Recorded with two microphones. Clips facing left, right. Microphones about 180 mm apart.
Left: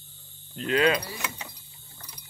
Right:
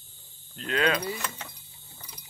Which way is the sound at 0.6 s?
5° left (ahead or behind).